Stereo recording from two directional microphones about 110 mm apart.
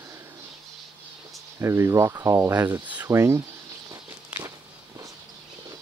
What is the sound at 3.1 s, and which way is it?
Speech, 25° right (ahead or behind).